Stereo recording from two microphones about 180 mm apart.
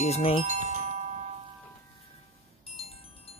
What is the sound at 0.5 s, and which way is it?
Glockenspiel, 40° right (ahead or behind).